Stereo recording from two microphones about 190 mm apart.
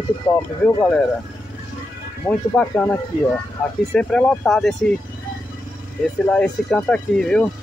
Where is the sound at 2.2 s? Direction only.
5° left (ahead or behind).